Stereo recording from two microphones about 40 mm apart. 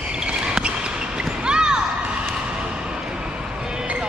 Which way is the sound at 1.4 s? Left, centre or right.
Right.